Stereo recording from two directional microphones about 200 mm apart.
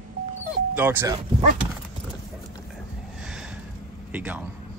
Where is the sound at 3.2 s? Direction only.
5° right (ahead or behind).